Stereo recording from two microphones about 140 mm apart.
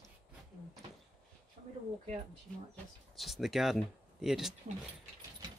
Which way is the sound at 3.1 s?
Centre (ahead or behind).